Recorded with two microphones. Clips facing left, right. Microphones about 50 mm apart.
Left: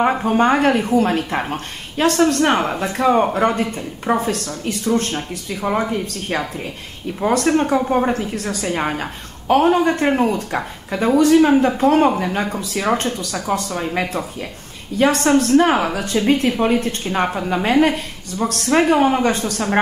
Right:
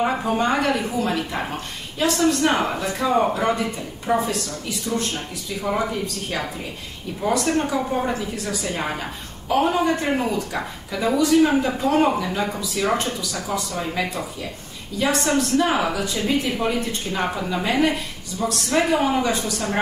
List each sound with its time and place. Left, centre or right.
0.0 s a woman's voice: left
17.2 s a woman's voice: left